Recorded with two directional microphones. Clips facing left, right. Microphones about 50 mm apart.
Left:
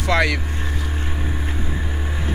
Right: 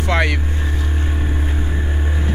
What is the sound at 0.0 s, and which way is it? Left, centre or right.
Speech, right.